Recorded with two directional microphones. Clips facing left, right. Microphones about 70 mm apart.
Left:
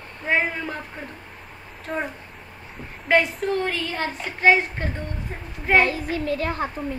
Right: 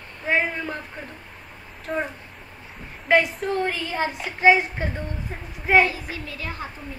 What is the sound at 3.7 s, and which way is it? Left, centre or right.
Speech, centre.